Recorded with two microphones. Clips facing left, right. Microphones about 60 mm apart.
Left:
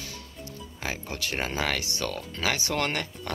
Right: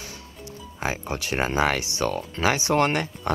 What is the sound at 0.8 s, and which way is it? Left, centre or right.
Speech, right.